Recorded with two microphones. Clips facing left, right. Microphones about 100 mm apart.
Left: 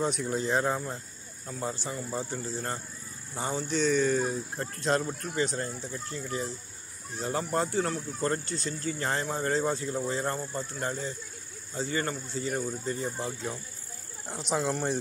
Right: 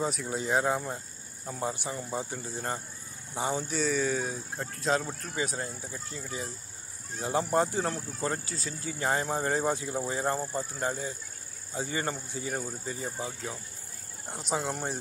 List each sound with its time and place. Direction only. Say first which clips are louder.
0.0 s speech: left 2 dB; 5° right (ahead or behind)
7.9 s speech: left 3 dB; 5° right (ahead or behind)